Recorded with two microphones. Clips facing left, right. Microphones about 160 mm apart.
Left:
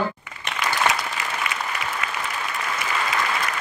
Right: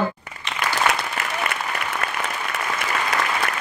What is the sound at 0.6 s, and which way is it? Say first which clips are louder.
Applause: right 1 dB; 55° right (ahead or behind).